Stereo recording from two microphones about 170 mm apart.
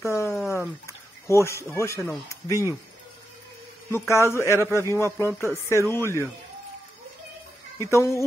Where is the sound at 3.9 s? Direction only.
15° left (ahead or behind).